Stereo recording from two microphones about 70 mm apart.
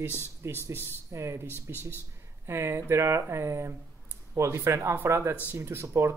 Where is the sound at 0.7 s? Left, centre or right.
Right.